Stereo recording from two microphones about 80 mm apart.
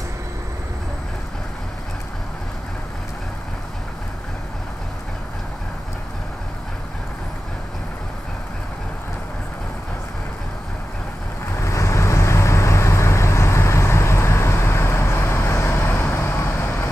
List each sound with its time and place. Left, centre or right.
11.5 s vehicle: left